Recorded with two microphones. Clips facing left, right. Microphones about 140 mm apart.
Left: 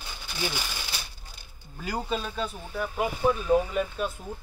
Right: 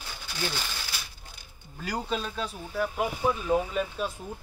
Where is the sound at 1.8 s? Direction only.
5° left (ahead or behind).